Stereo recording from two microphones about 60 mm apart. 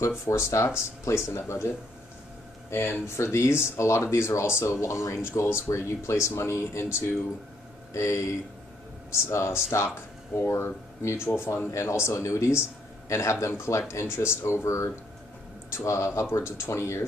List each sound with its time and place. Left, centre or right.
0.3 s speech: left
2.7 s speech: left